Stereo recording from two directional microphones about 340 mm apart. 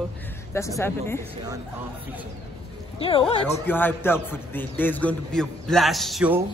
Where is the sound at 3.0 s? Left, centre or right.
Centre.